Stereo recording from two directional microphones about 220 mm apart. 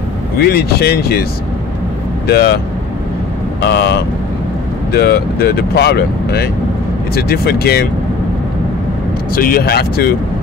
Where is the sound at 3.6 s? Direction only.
50° left (ahead or behind).